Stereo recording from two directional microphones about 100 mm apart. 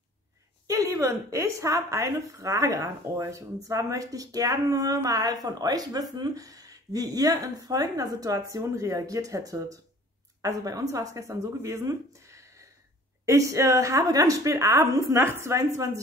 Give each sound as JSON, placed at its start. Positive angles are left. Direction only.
{"t": 0.7, "sound": "speech", "side_deg": -35}